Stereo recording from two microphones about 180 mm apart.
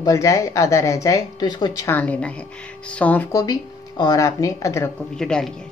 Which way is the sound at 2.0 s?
10° left (ahead or behind).